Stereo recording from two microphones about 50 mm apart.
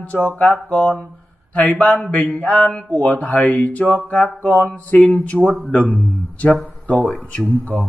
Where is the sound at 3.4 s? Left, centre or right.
Left.